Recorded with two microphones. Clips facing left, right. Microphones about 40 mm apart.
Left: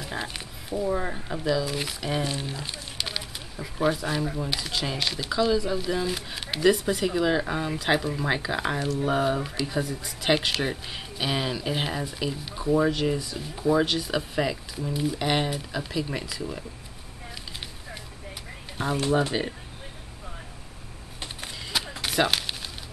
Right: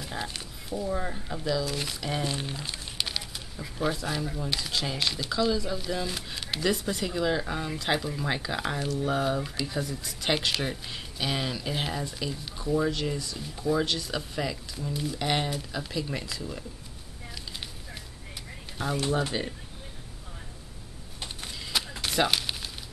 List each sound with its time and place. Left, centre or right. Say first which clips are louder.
0.0 s speech: left 2 dB; centre
18.8 s speech: left 4 dB; centre
21.2 s a sound: left 2 dB; centre